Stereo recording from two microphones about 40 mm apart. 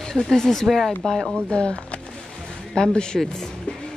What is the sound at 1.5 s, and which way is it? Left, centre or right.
Speech, left.